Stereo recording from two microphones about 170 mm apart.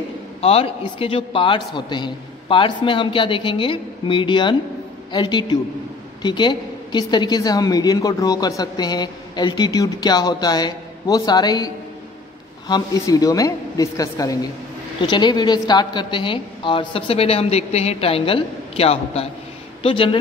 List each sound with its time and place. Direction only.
0.4 s a woman's voice: 35° left (ahead or behind)